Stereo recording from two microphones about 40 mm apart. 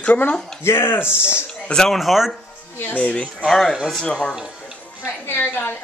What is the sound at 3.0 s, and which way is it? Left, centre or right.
Speech, left.